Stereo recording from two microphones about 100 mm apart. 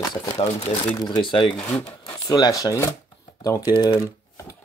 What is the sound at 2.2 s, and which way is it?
Speech, 40° left (ahead or behind).